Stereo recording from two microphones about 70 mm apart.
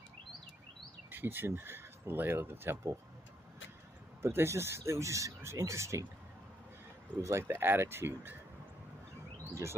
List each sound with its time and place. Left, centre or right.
1.1 s speech: right
4.2 s speech: right
7.2 s speech: right
9.5 s speech: right